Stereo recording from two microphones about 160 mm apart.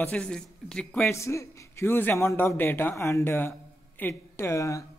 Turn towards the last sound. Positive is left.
turn(degrees=20)  # may be behind; listen again after turning